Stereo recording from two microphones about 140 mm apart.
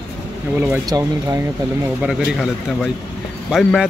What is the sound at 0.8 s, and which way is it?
Speech, 25° right (ahead or behind).